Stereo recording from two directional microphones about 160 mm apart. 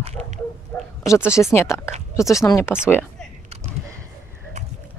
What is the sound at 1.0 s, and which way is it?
Speech, 20° left (ahead or behind).